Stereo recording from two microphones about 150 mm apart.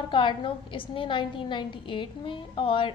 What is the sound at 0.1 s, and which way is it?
A woman's voice, 35° left (ahead or behind).